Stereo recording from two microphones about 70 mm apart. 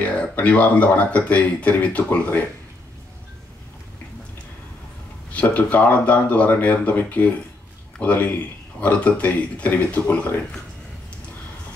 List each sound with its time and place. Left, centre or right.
0.0 s speech: left
5.3 s speech: left